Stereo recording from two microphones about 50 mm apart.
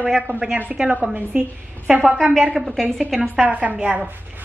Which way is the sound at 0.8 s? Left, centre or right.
Centre.